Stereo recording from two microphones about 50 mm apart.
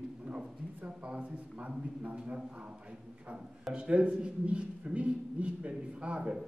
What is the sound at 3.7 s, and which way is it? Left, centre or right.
A man's voice, right.